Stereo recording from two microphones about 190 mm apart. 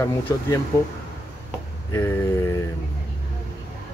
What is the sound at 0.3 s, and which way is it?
Speech, 15° left (ahead or behind).